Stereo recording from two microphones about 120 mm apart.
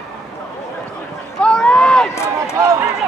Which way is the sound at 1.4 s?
5° left (ahead or behind).